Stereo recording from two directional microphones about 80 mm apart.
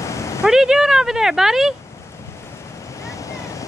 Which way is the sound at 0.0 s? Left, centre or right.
Left.